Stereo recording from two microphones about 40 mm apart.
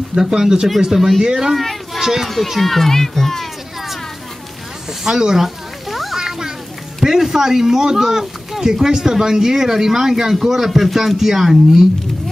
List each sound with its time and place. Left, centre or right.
0.1 s speech: centre
1.2 s speech: centre
2.2 s speech: centre
5.0 s speech: centre
5.9 s a sound: centre
7.0 s speech: centre